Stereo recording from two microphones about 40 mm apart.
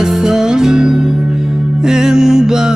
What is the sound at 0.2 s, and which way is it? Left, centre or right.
Music, centre.